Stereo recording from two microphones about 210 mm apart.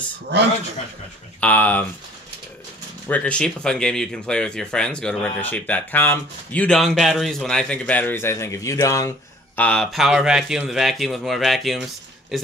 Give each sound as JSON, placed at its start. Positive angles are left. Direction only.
{"t": 0.3, "sound": "a man's voice", "side_deg": -55}
{"t": 1.4, "sound": "speech", "side_deg": 10}
{"t": 3.1, "sound": "speech", "side_deg": 5}
{"t": 9.6, "sound": "speech", "side_deg": 5}